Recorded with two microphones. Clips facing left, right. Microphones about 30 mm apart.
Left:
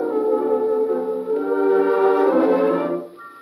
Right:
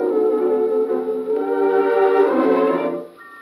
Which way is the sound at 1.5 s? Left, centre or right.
Centre.